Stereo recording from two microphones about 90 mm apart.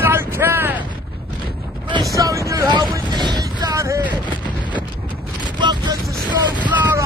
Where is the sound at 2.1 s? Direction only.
40° right (ahead or behind).